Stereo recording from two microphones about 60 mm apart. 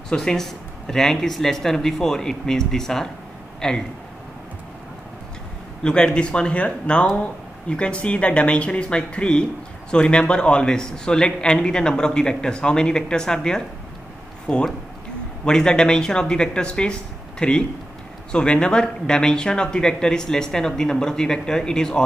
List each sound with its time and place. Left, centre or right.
0.1 s speech: centre
5.9 s speech: centre